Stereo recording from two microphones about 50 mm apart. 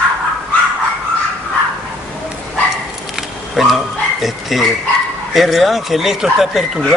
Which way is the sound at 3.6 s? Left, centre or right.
Centre.